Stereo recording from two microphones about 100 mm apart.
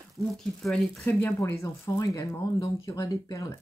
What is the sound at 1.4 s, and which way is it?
Speech, 30° left (ahead or behind).